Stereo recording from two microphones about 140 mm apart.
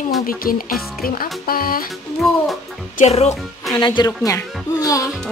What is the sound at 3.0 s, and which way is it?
Speech, 55° left (ahead or behind).